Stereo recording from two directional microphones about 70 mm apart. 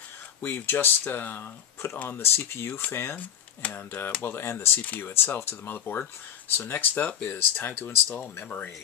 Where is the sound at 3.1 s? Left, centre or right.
Left.